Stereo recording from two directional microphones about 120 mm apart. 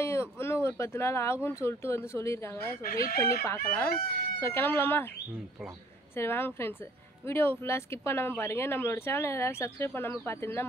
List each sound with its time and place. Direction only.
0.0 s speech: 20° left (ahead or behind)
6.1 s speech: 20° left (ahead or behind)